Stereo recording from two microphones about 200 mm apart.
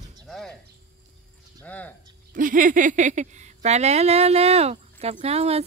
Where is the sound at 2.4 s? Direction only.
40° right (ahead or behind).